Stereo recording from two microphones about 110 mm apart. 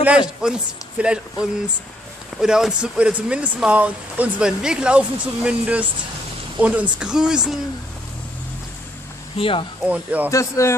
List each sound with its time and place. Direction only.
0.4 s speech: 10° right (ahead or behind)
9.4 s speech: 55° left (ahead or behind)
9.8 s speech: 15° right (ahead or behind)
10.3 s speech: 25° left (ahead or behind)